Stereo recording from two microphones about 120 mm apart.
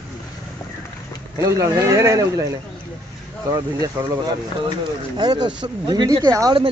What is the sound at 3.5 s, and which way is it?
Speech, 25° right (ahead or behind).